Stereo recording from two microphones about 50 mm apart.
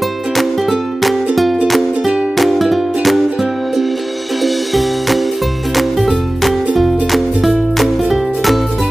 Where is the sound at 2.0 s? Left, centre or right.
Centre.